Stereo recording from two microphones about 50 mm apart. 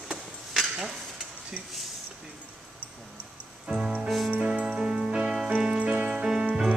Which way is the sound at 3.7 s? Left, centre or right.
Centre.